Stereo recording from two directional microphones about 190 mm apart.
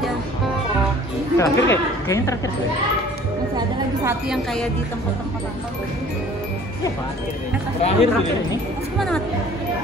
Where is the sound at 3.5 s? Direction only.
15° right (ahead or behind).